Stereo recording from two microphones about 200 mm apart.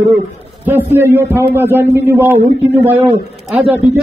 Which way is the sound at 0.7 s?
10° right (ahead or behind).